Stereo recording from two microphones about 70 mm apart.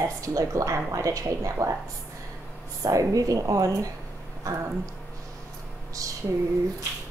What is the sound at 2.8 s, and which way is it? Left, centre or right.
A woman's voice, right.